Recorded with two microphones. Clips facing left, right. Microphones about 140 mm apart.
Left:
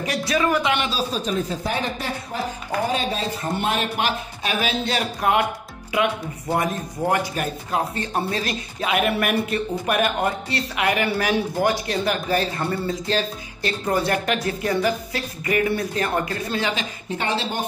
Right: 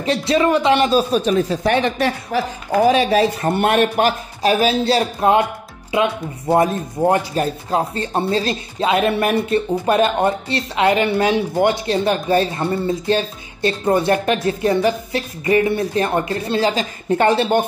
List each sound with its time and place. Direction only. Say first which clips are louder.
0.0 s speech: right 6 dB; 25° right (ahead or behind)
0.8 s a woman's voice: right 9 dB; 60° right (ahead or behind)
3.9 s speech: right 7 dB; 40° right (ahead or behind)
17.1 s speech: right 11 dB; 55° right (ahead or behind)